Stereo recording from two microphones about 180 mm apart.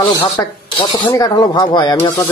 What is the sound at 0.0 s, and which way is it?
Speech, 20° left (ahead or behind).